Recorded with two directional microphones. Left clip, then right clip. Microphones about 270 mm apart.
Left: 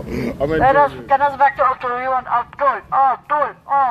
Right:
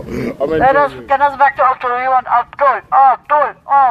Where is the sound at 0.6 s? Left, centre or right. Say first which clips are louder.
Right 2 dB; right.